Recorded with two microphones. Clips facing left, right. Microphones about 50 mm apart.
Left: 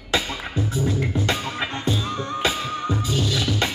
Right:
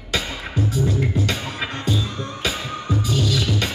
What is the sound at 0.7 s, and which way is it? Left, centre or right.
Music, left.